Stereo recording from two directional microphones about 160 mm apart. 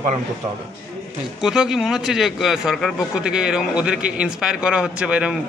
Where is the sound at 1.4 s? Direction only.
5° right (ahead or behind).